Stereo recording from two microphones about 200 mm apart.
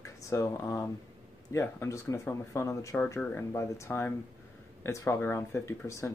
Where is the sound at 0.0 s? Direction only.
15° left (ahead or behind).